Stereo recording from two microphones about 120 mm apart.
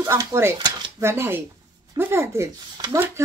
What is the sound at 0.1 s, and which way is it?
Speech, 25° right (ahead or behind).